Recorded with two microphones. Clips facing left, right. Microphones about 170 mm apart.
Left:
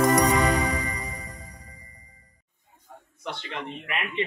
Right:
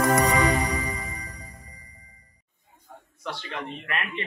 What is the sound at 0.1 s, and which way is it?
Music, centre (ahead or behind).